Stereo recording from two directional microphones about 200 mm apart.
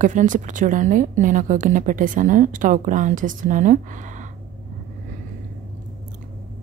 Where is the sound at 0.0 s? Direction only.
40° right (ahead or behind).